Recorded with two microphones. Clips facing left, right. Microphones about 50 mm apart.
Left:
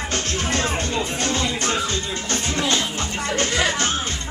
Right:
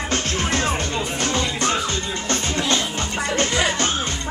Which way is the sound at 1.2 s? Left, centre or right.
Centre.